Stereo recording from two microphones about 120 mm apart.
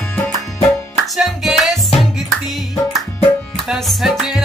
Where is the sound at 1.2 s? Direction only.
5° right (ahead or behind).